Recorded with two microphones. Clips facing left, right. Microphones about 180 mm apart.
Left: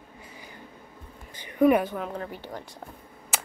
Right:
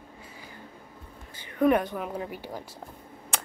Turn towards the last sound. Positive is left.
turn(degrees=5)  # may be behind; listen again after turning